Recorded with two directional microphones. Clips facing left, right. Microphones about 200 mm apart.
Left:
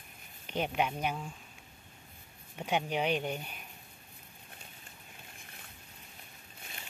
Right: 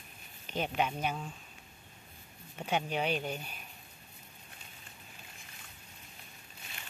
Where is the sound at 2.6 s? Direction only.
10° left (ahead or behind).